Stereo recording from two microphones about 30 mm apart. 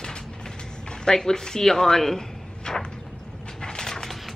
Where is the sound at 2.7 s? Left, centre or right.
Left.